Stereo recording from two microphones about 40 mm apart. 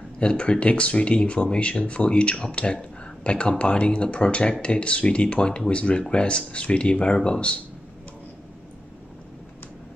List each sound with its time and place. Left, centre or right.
0.2 s speech: left